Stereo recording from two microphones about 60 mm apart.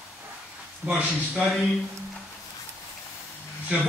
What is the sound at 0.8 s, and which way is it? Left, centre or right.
Speech, right.